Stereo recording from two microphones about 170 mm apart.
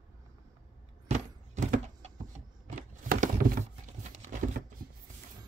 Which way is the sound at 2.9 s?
50° right (ahead or behind).